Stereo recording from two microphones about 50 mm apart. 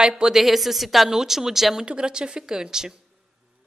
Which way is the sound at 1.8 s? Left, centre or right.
Centre.